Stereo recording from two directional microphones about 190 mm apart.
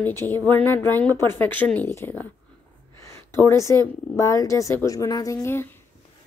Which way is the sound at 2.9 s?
15° left (ahead or behind).